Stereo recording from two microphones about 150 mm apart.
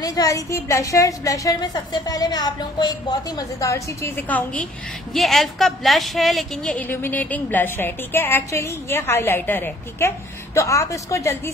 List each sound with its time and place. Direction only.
0.0 s a woman's voice: 25° left (ahead or behind)